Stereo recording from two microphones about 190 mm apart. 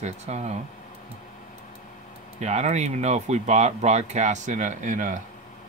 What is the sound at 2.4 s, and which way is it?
Speech, 35° right (ahead or behind).